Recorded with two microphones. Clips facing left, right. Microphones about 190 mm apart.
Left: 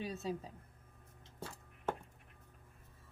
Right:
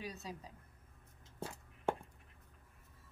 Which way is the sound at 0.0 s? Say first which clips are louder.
Left 6 dB; 25° left (ahead or behind).